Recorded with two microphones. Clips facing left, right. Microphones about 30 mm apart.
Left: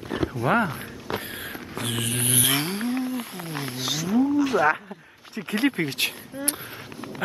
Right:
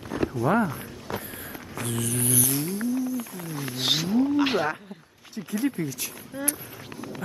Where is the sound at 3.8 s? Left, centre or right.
Right.